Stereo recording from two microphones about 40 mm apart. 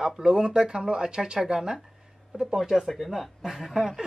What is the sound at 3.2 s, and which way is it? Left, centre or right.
Speech, centre.